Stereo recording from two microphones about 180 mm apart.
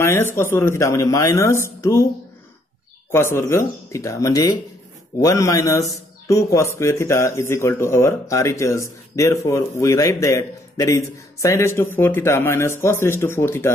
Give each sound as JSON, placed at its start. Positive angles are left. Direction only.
{"t": 0.0, "sound": "a man's voice", "side_deg": 15}
{"t": 3.1, "sound": "a man's voice", "side_deg": 15}